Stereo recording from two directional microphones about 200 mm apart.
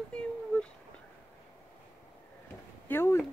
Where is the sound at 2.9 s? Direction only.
10° left (ahead or behind).